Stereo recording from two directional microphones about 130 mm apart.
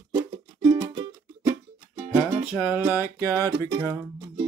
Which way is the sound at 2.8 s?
20° right (ahead or behind).